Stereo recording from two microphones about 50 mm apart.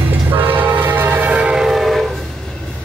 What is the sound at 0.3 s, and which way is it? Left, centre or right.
Train, right.